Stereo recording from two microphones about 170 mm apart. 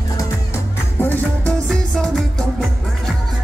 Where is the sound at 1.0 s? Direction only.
10° left (ahead or behind).